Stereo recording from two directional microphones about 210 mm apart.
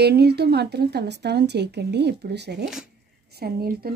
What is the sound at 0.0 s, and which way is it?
Speech, 50° right (ahead or behind).